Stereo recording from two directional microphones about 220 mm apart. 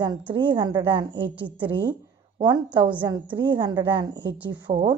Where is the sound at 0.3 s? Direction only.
20° right (ahead or behind).